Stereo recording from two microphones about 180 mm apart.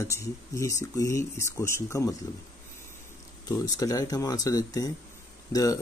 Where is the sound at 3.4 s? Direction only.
20° left (ahead or behind).